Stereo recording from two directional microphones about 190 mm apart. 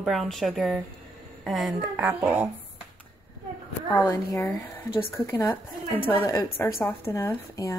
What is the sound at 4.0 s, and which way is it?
A woman's voice, 15° left (ahead or behind).